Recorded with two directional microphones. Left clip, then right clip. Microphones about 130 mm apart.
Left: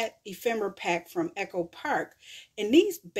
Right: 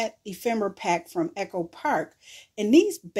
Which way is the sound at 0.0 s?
40° right (ahead or behind).